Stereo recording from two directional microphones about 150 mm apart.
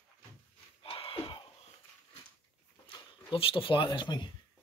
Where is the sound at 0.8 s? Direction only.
35° left (ahead or behind).